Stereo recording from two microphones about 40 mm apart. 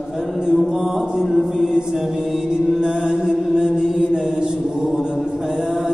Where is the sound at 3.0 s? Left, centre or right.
Centre.